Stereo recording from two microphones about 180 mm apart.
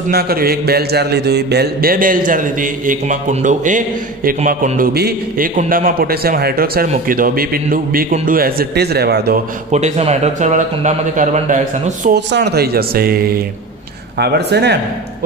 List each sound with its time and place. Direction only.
0.1 s a man's voice: 60° right (ahead or behind)
9.7 s speech: 40° right (ahead or behind)
12.1 s speech: 70° right (ahead or behind)